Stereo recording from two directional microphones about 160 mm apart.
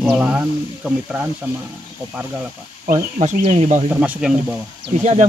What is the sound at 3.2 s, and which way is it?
Speech, 50° right (ahead or behind).